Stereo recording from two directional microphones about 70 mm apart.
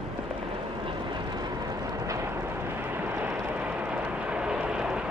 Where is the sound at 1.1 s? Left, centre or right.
Right; by 5.1 s centre.